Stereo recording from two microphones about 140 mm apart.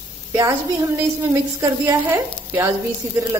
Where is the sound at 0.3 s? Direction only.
20° right (ahead or behind).